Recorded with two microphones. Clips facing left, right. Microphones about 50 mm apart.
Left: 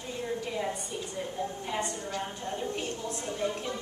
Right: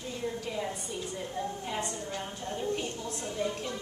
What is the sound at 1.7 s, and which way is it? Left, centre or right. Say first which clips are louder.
Speech: left 2 dB; centre.